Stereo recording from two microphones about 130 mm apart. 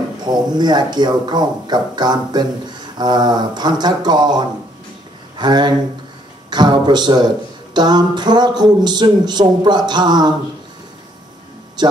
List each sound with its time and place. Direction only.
0.2 s speech: 35° right (ahead or behind)
11.8 s speech: 35° right (ahead or behind)